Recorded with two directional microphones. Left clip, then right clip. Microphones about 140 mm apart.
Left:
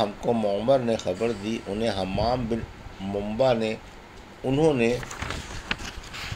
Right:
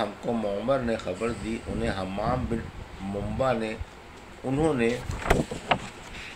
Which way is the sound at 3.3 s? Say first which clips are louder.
Left 4 dB; 45° left (ahead or behind).